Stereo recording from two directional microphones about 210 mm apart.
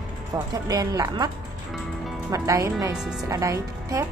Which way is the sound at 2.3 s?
15° right (ahead or behind).